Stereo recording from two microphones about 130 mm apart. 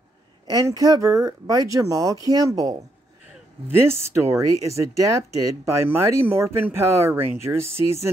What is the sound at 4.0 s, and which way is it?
Speech, 20° right (ahead or behind).